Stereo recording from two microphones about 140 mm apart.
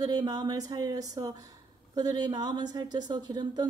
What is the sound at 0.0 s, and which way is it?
Speech, 30° right (ahead or behind).